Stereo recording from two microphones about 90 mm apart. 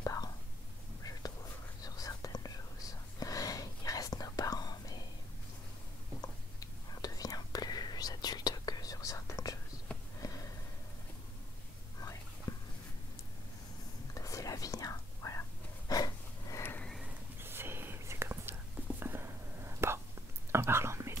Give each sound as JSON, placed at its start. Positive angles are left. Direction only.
{"t": 0.0, "sound": "whispering", "side_deg": 40}
{"t": 1.8, "sound": "whispering", "side_deg": 40}
{"t": 6.6, "sound": "whispering", "side_deg": 45}
{"t": 12.0, "sound": "whispering", "side_deg": 40}
{"t": 14.1, "sound": "whispering", "side_deg": 35}
{"t": 15.9, "sound": "breathing", "side_deg": 40}
{"t": 17.4, "sound": "whispering", "side_deg": -25}